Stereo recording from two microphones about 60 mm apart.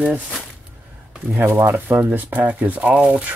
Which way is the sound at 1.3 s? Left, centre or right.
Right.